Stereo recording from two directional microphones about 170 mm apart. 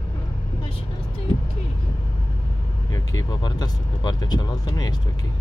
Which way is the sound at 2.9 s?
20° left (ahead or behind).